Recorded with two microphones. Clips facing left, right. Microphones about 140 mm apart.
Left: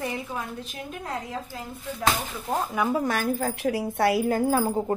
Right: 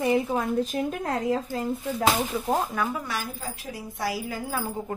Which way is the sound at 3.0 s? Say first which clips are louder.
Left 8 dB; 55° left (ahead or behind).